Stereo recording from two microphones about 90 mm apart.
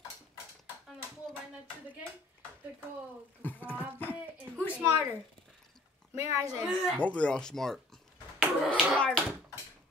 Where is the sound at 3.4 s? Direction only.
20° left (ahead or behind).